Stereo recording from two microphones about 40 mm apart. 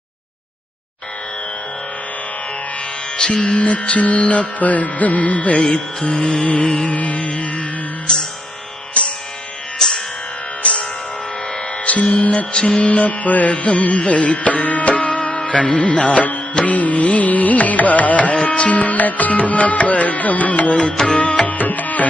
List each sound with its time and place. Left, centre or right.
3.2 s music: left
9.8 s music: centre
10.6 s music: left
11.8 s speech: left
12.5 s music: left